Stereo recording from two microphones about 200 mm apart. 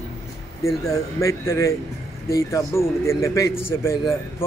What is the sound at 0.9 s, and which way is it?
Speech, 15° left (ahead or behind).